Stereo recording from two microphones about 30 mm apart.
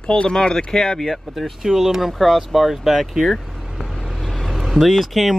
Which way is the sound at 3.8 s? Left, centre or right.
Centre.